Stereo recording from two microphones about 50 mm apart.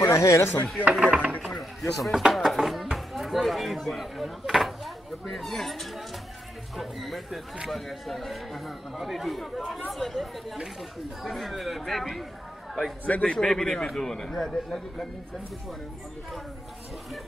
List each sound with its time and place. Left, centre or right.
0.0 s speech: left
0.9 s speech: centre
1.4 s chop: centre
2.3 s speech: centre
13.0 s a man's voice: left
13.3 s speech: centre